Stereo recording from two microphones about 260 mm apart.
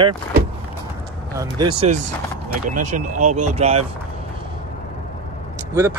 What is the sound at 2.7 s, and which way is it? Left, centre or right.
Speech, right.